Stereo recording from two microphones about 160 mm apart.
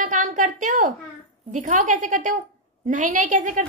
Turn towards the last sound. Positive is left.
turn(degrees=-55)  # may be behind; listen again after turning